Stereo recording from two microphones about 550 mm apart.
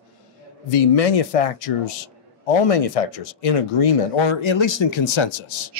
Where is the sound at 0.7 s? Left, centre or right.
Left.